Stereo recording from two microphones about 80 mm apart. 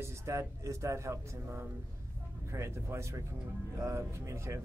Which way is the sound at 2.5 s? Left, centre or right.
Right.